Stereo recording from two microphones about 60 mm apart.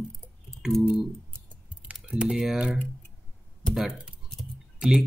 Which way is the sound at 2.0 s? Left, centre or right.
Centre.